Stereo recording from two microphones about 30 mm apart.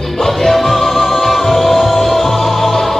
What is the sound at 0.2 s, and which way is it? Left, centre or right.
Music, centre.